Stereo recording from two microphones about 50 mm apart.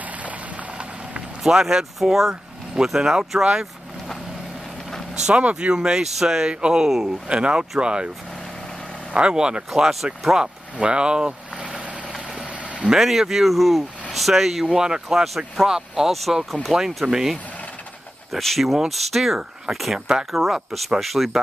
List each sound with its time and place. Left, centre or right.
1.4 s speech: centre
5.2 s speech: right
9.1 s speech: centre
9.8 s speech: centre
10.3 s speech: centre
12.4 s a sound: centre
12.9 s speech: centre
18.4 s speech: centre